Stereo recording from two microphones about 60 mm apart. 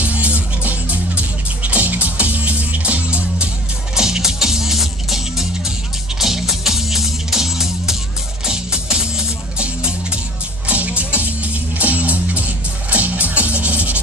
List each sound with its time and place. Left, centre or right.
0.0 s music: right
3.9 s music: centre
9.6 s music: centre